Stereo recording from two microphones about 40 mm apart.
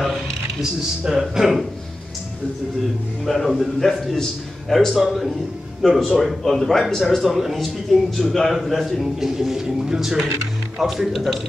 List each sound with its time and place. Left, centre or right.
0.6 s speech: centre
3.3 s a man's voice: centre
9.2 s speech: centre